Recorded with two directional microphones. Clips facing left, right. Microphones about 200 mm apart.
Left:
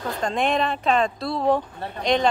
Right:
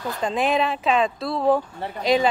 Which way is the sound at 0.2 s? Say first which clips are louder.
Right 1 dB; 5° right (ahead or behind).